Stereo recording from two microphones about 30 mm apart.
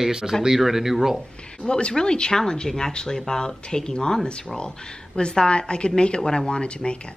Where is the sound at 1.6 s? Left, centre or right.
Left.